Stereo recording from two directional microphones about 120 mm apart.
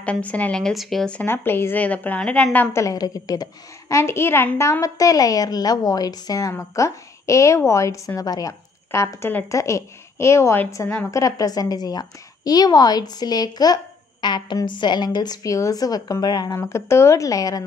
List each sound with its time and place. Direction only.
0.0 s a woman's voice: 10° left (ahead or behind)
1.2 s a woman's voice: 20° left (ahead or behind)
2.8 s a woman's voice: 30° left (ahead or behind)
3.9 s a woman's voice: 20° left (ahead or behind)